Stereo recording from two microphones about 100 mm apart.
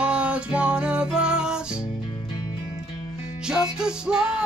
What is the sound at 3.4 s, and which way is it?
Music, 5° right (ahead or behind).